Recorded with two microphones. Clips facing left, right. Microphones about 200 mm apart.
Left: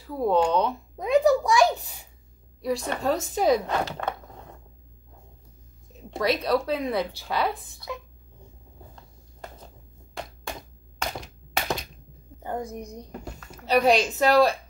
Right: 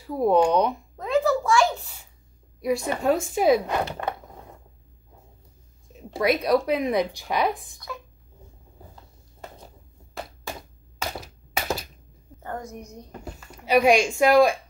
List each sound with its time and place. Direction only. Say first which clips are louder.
0.1 s speech: right 3 dB; 15° right (ahead or behind)
0.9 s a sound: left 3 dB; 15° left (ahead or behind)
2.6 s speech: right 3 dB; 15° right (ahead or behind)
6.0 s speech: right 3 dB; 5° right (ahead or behind)
11.0 s thunk: even; 5° right (ahead or behind)
12.4 s a sound: left 3 dB; 15° left (ahead or behind)
13.2 s speech: even; 5° right (ahead or behind)